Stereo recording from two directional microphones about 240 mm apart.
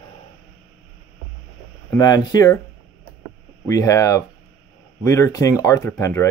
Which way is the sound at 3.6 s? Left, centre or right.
Centre.